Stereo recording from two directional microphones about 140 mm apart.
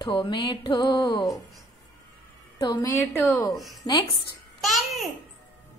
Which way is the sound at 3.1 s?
15° left (ahead or behind).